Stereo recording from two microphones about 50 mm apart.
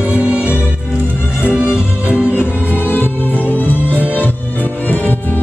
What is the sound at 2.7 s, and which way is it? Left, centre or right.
Music, left.